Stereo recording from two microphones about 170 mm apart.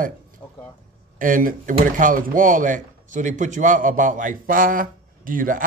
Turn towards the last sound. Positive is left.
turn(degrees=-50)  # may be behind; listen again after turning